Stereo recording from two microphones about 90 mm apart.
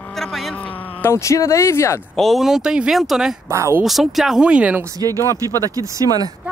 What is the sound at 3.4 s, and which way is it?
Speech, 30° right (ahead or behind).